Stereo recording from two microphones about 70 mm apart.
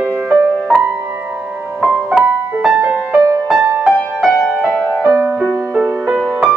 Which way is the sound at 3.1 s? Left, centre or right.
Centre.